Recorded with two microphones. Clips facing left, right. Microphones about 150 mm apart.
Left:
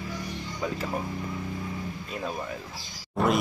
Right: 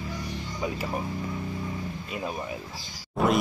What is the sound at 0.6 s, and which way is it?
Speech, 10° right (ahead or behind).